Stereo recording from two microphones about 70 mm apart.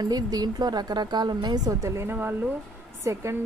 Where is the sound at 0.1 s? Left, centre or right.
Right.